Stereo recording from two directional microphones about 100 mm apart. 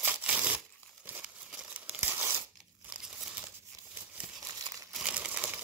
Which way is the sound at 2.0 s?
20° right (ahead or behind).